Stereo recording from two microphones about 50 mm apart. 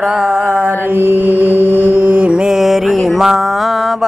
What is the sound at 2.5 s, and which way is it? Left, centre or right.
Mantra, centre.